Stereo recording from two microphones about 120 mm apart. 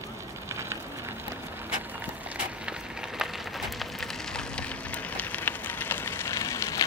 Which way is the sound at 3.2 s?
Centre (ahead or behind).